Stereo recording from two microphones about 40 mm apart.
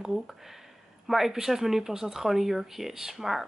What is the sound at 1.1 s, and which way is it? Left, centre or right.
Speech, centre.